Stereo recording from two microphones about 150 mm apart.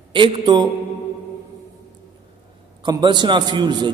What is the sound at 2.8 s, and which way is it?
A man's voice, 30° right (ahead or behind).